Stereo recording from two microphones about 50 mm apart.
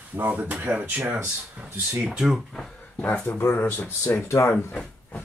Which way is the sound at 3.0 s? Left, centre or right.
Left.